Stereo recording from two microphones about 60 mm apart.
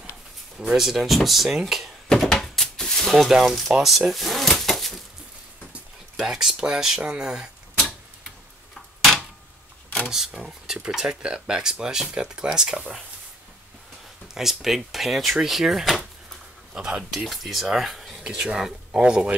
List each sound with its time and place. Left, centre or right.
0.6 s speech: centre
2.0 s a sound: centre
3.1 s speech: centre
3.8 s drawer open or close: centre
6.1 s speech: centre
10.0 s speech: centre
14.2 s speech: centre
16.7 s speech: centre
17.3 s speech: centre